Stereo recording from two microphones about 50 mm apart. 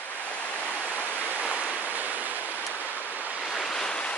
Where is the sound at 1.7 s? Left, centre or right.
Right.